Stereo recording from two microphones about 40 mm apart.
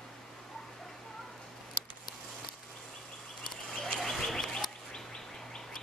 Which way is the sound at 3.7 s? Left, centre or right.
Centre.